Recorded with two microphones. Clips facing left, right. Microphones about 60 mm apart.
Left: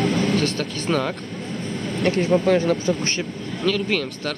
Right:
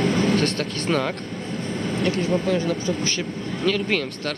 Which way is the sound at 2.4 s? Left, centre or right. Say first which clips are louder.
Left 4 dB; left.